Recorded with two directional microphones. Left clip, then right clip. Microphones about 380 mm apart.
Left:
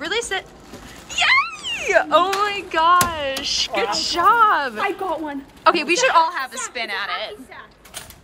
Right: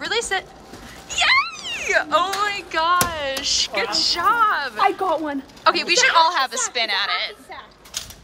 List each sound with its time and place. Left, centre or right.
0.0 s a sound: centre
4.7 s speech: right
5.6 s a woman's voice: centre